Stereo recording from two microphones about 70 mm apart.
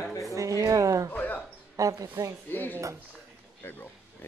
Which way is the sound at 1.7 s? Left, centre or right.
Right.